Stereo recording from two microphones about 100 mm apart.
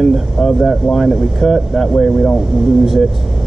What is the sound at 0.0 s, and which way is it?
Speech, centre (ahead or behind).